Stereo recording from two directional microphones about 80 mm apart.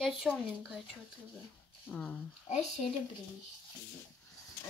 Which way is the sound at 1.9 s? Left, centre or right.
Centre.